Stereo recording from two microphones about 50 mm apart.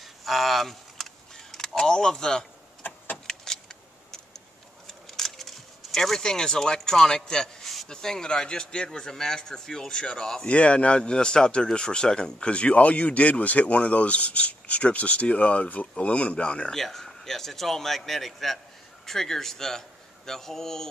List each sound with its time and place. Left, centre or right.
0.0 s keys jangling: centre
3.3 s vehicle: centre
4.8 s a sound: centre
7.9 s a man's voice: centre
10.5 s a man's voice: left
16.7 s a man's voice: centre